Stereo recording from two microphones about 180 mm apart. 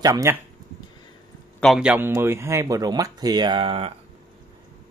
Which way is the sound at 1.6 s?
Centre (ahead or behind).